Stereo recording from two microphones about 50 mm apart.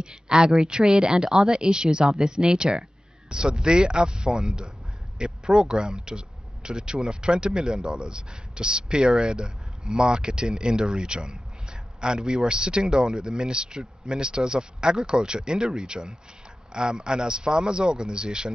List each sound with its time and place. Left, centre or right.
0.0 s speech: centre